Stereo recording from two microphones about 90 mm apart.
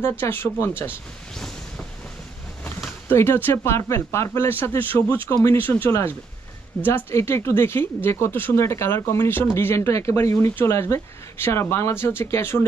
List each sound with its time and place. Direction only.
0.2 s speech: 25° left (ahead or behind)
3.1 s speech: 25° left (ahead or behind)